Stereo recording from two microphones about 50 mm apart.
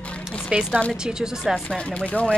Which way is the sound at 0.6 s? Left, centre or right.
Left.